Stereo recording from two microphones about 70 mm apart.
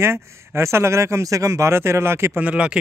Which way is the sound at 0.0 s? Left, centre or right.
Right.